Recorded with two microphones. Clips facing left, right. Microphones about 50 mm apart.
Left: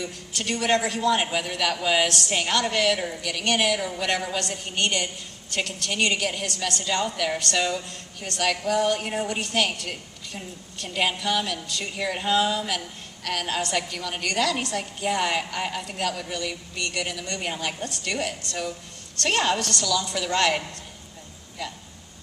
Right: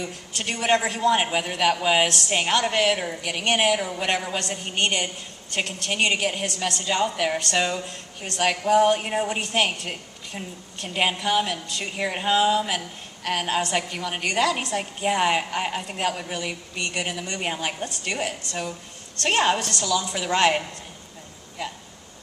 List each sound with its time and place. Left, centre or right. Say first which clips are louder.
0.0 s a woman's voice: right 1 dB; right
9.1 s a woman's voice: right 2 dB; centre